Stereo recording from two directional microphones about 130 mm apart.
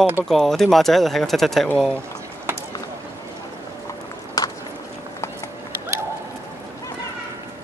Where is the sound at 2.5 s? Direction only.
15° right (ahead or behind).